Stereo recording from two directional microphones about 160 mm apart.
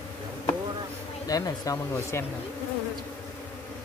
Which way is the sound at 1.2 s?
20° left (ahead or behind).